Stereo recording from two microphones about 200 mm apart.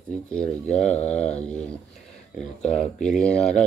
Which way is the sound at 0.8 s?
35° left (ahead or behind).